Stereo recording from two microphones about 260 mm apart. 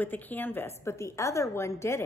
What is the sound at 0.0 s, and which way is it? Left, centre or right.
Speech, centre.